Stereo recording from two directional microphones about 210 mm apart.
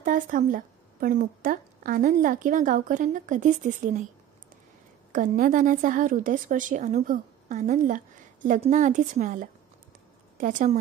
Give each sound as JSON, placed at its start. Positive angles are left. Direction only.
{"t": 0.0, "sound": "a woman's voice", "side_deg": -40}
{"t": 5.1, "sound": "a woman's voice", "side_deg": -40}